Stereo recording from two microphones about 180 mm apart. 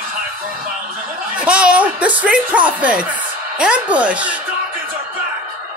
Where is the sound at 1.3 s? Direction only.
5° right (ahead or behind).